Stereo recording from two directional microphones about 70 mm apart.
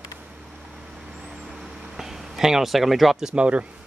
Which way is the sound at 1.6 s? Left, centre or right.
Centre.